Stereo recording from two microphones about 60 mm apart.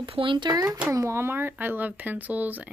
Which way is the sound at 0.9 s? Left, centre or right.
Right.